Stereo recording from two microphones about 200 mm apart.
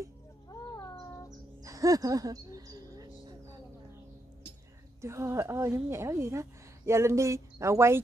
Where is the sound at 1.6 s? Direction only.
15° right (ahead or behind).